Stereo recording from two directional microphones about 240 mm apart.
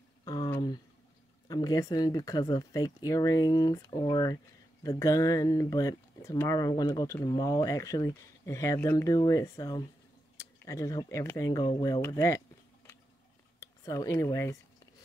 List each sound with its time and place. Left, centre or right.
0.2 s a sound: centre
1.5 s speech: centre
13.6 s speech: centre